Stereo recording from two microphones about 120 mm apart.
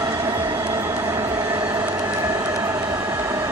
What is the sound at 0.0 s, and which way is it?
Train, 25° right (ahead or behind).